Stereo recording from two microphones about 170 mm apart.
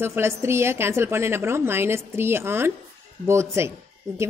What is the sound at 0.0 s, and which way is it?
A woman's voice, 15° right (ahead or behind).